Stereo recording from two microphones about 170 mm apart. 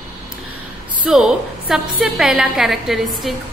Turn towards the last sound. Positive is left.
turn(degrees=0)  # may be behind; listen again after turning